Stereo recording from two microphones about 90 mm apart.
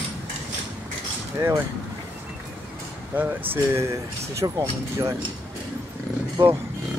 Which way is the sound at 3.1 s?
25° right (ahead or behind).